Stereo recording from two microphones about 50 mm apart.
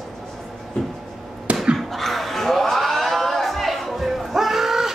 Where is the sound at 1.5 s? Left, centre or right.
Right.